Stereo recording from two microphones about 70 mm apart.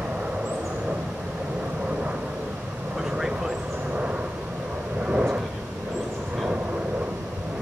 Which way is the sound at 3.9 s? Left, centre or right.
Centre.